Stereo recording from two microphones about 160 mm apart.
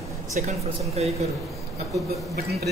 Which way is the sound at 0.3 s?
50° right (ahead or behind).